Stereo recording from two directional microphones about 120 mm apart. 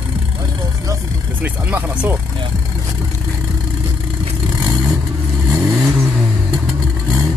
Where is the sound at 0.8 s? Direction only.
20° right (ahead or behind).